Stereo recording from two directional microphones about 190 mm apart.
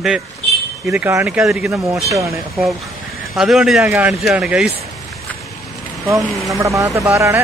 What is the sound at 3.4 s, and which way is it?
Speech, centre (ahead or behind).